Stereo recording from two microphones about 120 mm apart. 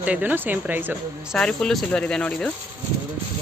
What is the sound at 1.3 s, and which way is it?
Speech, 5° left (ahead or behind).